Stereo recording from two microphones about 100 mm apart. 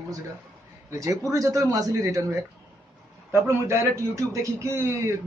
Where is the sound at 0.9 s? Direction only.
30° right (ahead or behind).